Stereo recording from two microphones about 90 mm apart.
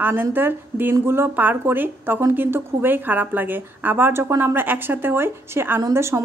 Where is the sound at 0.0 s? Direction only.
25° right (ahead or behind).